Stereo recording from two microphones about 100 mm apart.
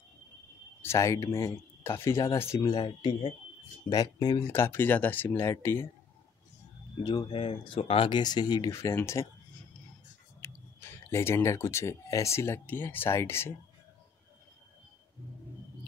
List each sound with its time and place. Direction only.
0.8 s speech: 30° left (ahead or behind)
2.7 s speech: 45° left (ahead or behind)
3.1 s speech: 65° left (ahead or behind)
3.9 s speech: 40° left (ahead or behind)
4.4 s speech: 25° left (ahead or behind)
7.0 s speech: 45° left (ahead or behind); by 8.2 s 65° left (ahead or behind)
8.2 s speech: 45° left (ahead or behind)
8.7 s speech: 30° left (ahead or behind)
10.4 s speech: 25° left (ahead or behind)